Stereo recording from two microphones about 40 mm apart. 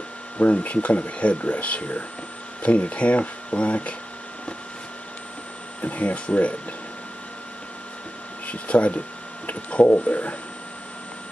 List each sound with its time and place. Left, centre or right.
0.4 s speech: left
5.8 s speech: left
8.5 s speech: left